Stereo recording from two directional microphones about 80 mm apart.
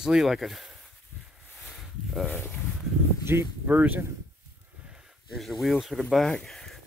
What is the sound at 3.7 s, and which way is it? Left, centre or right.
Speech, centre.